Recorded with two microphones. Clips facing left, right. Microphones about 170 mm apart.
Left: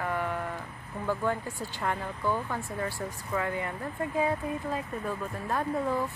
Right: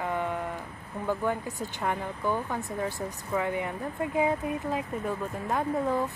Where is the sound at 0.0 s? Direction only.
20° right (ahead or behind).